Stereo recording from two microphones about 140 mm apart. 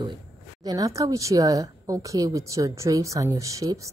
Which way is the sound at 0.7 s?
25° right (ahead or behind).